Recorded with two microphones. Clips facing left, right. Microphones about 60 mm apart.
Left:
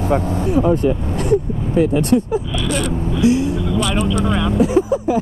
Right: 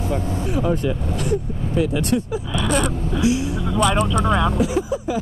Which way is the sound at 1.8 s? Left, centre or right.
Left.